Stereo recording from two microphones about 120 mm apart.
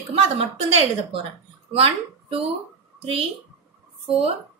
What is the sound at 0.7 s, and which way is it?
A woman's voice, 55° right (ahead or behind).